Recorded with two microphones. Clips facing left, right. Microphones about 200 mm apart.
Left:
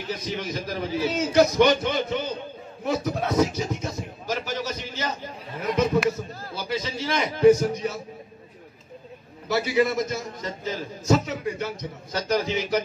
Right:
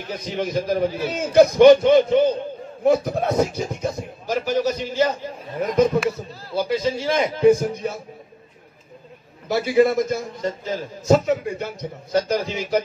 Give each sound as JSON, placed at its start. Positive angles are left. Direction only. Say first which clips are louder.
{"t": 0.1, "sound": "a man's voice", "louder": "right 6 dB", "side_deg": -55}
{"t": 9.5, "sound": "a man's voice", "louder": "right 5 dB", "side_deg": -50}